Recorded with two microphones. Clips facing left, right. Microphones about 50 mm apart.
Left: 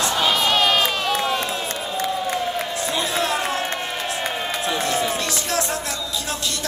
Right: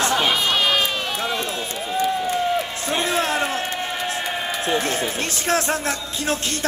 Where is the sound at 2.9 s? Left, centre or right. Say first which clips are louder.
Right 2 dB; right.